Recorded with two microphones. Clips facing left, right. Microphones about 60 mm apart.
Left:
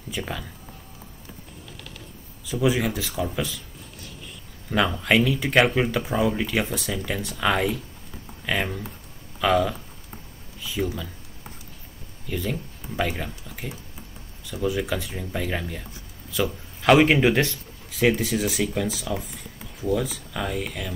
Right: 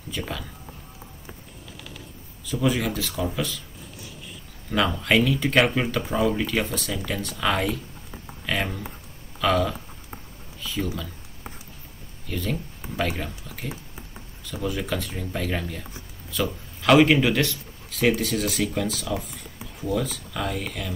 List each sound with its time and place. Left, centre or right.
0.1 s speech: centre
1.7 s bird: centre
2.4 s speech: centre
4.0 s a sound: centre
4.6 s speech: centre
12.3 s speech: centre
12.8 s a sound: right
14.4 s speech: centre
16.3 s a sound: centre
17.0 s speech: left
17.8 s speech: centre